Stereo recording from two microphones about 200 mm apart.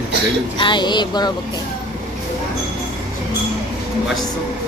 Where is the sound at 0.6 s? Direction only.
25° left (ahead or behind).